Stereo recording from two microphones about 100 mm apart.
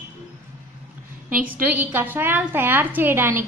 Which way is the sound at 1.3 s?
15° right (ahead or behind).